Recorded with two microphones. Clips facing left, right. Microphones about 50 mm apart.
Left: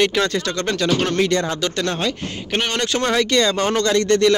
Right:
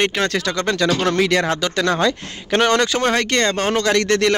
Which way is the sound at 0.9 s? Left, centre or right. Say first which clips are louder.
Left 1 dB; right.